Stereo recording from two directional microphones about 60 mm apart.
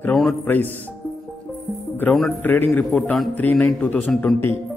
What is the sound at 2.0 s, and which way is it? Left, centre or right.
A man's voice, left.